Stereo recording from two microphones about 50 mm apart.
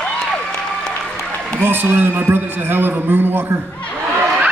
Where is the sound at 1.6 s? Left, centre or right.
Right.